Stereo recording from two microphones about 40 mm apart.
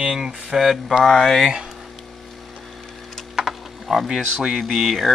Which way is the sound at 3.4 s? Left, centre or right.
Centre.